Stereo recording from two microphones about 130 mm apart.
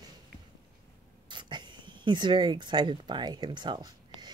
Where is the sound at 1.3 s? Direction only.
35° right (ahead or behind).